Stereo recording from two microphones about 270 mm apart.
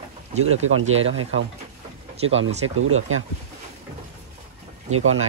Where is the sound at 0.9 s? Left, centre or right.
Right.